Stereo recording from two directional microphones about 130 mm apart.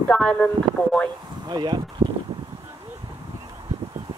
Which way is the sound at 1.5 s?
35° right (ahead or behind).